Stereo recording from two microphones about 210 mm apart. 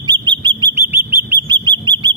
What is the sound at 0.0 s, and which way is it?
Bird, 20° right (ahead or behind).